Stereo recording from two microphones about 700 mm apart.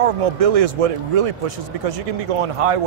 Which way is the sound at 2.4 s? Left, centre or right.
Right.